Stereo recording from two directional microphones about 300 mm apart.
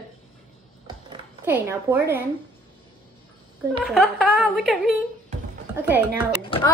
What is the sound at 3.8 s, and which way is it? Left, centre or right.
A woman's voice, centre.